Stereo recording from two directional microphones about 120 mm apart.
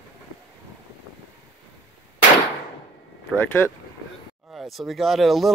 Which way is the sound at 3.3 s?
15° left (ahead or behind).